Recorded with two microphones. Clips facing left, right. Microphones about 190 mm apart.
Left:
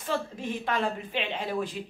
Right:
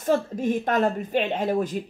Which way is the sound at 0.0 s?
45° right (ahead or behind).